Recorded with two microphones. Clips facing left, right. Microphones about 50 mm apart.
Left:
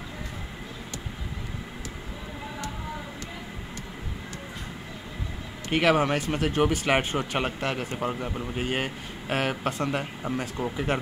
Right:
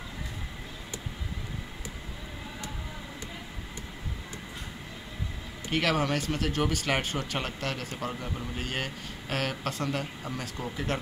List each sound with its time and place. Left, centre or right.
5.7 s speech: centre